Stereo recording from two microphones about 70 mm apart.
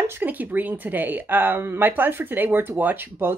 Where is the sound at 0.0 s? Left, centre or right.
Right.